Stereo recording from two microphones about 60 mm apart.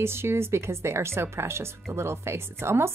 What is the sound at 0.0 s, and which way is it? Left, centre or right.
Speech, right.